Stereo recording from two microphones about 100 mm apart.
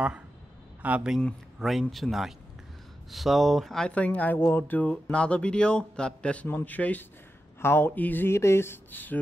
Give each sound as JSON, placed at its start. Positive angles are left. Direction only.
{"t": 0.8, "sound": "a man's voice", "side_deg": -15}
{"t": 1.2, "sound": "speech", "side_deg": 0}